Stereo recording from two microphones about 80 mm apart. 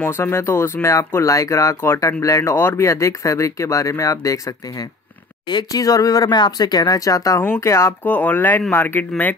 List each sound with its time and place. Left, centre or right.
0.0 s speech: left
5.5 s speech: left
5.8 s speech: left
7.4 s speech: left
8.1 s speech: left